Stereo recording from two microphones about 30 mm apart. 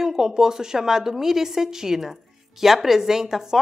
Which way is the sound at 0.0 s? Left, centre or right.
Centre.